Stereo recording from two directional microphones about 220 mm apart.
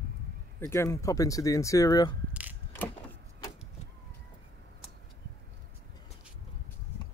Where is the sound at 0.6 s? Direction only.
10° left (ahead or behind).